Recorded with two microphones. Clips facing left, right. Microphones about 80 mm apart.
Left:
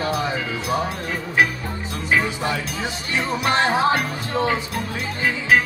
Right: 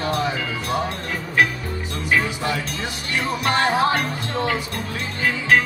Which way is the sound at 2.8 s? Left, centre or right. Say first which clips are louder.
Left 2 dB; centre.